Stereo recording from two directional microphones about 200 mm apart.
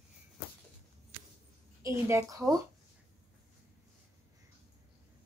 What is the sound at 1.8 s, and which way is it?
Speech, 15° right (ahead or behind).